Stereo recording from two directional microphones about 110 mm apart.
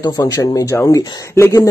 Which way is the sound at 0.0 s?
35° left (ahead or behind).